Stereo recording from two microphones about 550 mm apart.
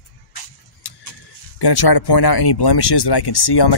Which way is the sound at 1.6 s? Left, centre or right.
Left.